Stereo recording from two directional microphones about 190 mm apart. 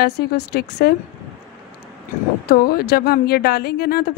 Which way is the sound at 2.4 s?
50° left (ahead or behind).